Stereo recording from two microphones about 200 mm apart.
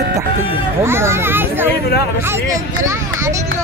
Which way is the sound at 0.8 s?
10° right (ahead or behind).